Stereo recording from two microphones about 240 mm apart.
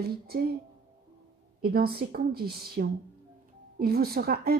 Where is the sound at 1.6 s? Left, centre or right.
Right.